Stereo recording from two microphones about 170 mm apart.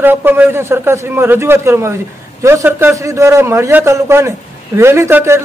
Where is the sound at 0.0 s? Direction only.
10° right (ahead or behind).